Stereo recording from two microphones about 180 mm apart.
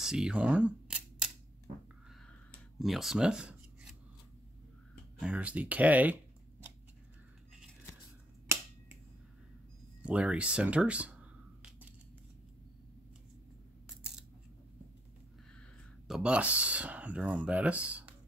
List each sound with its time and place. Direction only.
0.0 s camera: 5° right (ahead or behind)
2.8 s speech: centre (ahead or behind)
5.2 s speech: 10° right (ahead or behind)
10.0 s a sound: 5° right (ahead or behind)
16.1 s speech: 5° right (ahead or behind)